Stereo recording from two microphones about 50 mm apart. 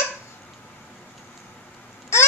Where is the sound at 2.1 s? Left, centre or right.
Left.